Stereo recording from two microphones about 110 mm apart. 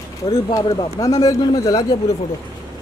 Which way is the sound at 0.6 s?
35° left (ahead or behind).